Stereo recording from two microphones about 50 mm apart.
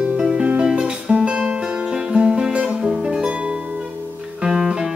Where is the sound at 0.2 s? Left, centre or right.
Centre.